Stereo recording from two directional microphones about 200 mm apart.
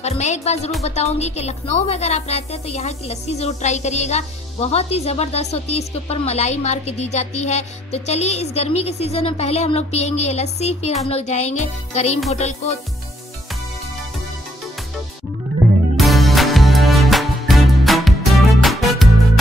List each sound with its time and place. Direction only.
0.0 s a woman's voice: 35° left (ahead or behind)
16.0 s music: centre (ahead or behind)